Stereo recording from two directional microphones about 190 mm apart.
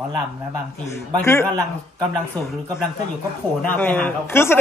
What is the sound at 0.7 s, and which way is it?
A man's voice, 15° left (ahead or behind).